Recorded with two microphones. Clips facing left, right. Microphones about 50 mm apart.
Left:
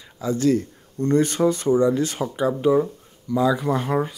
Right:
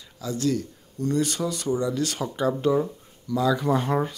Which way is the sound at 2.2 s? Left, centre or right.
Centre.